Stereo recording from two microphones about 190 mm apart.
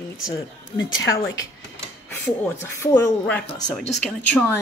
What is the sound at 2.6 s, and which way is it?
Speech, 15° left (ahead or behind).